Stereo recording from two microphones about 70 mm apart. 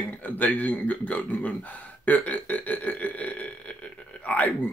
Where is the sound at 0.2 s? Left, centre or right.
Left.